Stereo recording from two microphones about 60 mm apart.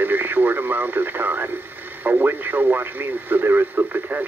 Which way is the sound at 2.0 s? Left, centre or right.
Right.